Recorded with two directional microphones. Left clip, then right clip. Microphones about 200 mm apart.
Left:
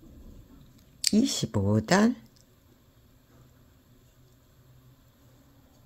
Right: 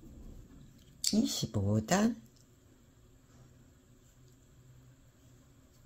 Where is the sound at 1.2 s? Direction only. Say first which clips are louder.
Left 7 dB; 25° left (ahead or behind).